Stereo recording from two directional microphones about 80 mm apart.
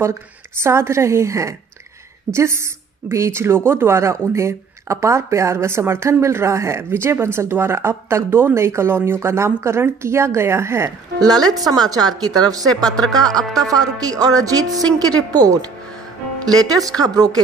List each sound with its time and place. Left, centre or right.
0.6 s speech: right
11.1 s a woman's voice: right
12.8 s speech: centre
13.6 s a woman's voice: right